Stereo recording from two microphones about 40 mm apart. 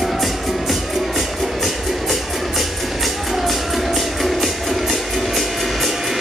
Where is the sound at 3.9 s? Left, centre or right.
Centre.